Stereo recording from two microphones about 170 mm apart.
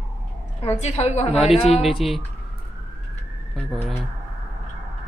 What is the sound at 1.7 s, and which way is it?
Speech, centre (ahead or behind).